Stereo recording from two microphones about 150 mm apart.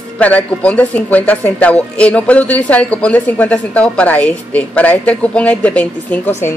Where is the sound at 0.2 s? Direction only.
10° left (ahead or behind).